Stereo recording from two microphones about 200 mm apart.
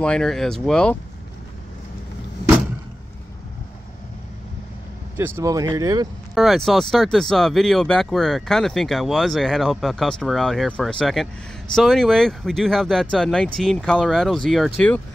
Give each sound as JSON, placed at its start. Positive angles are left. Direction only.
{"t": 0.0, "sound": "speech", "side_deg": 5}
{"t": 5.1, "sound": "speech", "side_deg": -10}
{"t": 6.3, "sound": "speech", "side_deg": 0}